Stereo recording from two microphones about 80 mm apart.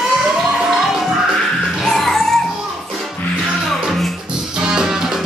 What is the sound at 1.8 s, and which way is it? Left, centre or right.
Music, centre.